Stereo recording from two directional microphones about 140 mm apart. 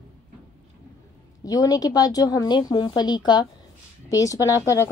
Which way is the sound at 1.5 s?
25° left (ahead or behind).